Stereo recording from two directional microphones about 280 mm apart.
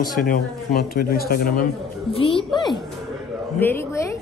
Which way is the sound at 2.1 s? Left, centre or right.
Centre.